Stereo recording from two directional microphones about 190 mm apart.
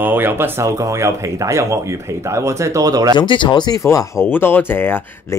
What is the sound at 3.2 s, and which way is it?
Speech, 25° left (ahead or behind).